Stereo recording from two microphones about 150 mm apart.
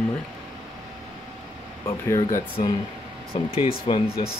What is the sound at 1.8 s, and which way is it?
Speech, 20° left (ahead or behind).